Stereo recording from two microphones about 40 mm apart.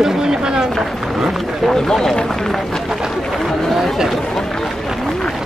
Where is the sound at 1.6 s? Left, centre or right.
Centre.